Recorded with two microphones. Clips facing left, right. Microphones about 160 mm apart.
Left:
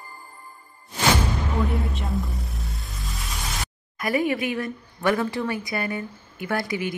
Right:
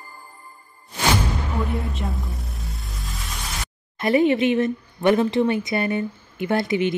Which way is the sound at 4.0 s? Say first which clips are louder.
Right 6 dB; 25° right (ahead or behind).